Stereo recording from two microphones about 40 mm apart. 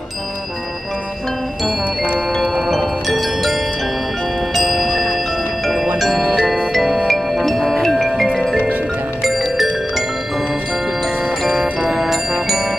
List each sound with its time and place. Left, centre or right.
2.4 s wind chime: centre
4.6 s music: centre
8.5 s music: right
11.2 s music: centre